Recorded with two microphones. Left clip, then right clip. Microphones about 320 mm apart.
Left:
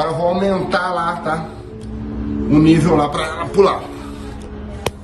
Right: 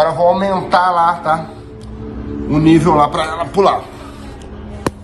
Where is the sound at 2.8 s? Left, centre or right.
Centre.